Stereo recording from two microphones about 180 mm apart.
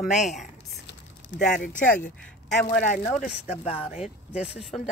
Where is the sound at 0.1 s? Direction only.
40° left (ahead or behind).